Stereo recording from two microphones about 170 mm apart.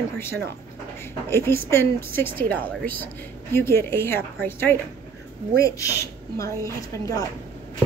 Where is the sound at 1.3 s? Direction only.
15° left (ahead or behind).